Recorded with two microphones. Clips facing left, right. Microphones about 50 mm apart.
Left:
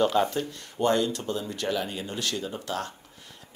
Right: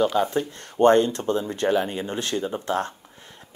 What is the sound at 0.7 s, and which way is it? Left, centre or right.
Speech, right.